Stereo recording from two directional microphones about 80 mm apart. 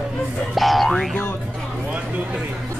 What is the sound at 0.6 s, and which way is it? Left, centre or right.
Boing, centre.